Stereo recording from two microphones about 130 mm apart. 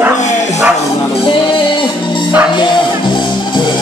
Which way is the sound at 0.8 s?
45° left (ahead or behind).